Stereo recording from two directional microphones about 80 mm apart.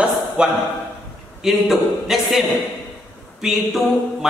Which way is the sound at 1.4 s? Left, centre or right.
Centre.